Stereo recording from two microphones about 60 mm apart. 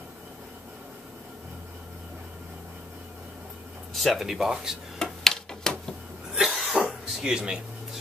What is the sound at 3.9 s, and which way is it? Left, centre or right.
Speech, centre.